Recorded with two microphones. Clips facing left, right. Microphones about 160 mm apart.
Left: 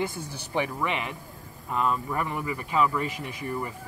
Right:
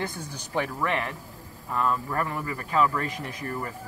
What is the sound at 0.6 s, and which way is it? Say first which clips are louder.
Speech: right 1 dB; 15° left (ahead or behind).